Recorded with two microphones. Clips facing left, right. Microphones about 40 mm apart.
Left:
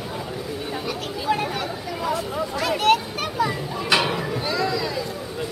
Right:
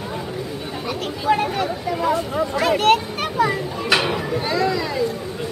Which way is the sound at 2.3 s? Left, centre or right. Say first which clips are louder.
Right 5 dB; centre.